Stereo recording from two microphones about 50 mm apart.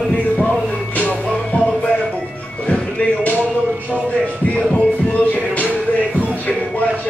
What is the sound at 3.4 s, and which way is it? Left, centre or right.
Music, right.